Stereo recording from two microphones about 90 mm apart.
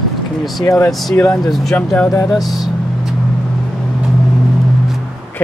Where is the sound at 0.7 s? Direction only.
35° left (ahead or behind).